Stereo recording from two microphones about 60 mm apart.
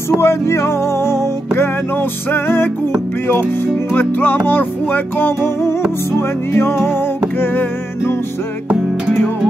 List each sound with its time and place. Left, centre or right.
0.2 s music: left
2.3 s music: left
3.9 s music: left